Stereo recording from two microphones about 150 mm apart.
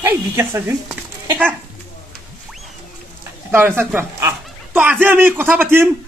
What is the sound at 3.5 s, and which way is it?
A man's voice, 15° right (ahead or behind).